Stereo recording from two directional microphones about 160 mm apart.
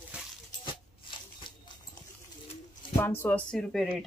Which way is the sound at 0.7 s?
30° left (ahead or behind).